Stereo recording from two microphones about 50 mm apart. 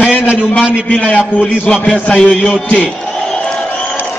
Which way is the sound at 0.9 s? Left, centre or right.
Left.